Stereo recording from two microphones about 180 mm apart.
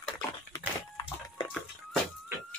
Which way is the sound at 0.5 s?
25° left (ahead or behind).